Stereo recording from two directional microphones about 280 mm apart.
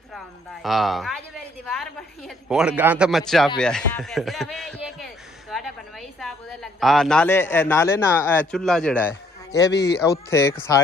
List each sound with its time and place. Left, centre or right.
0.1 s a woman's voice: centre
2.2 s a man's voice: centre
9.7 s speech: left
10.0 s speech: centre